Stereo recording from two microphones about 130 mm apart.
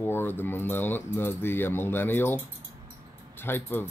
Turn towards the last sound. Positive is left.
turn(degrees=15)  # may be behind; listen again after turning